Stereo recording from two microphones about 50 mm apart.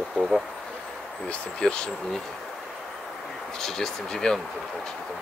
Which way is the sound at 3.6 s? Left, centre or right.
Centre.